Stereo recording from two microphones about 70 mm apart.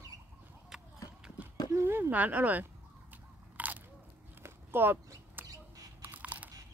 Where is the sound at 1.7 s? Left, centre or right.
Right.